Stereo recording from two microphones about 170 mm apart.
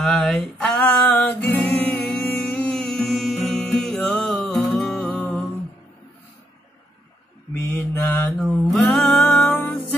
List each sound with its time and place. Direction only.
0.0 s music: centre (ahead or behind)
7.5 s mantra: 15° left (ahead or behind)
8.3 s music: centre (ahead or behind)